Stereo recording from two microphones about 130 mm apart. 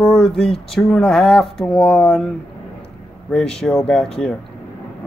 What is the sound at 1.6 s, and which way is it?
Speech, 10° left (ahead or behind).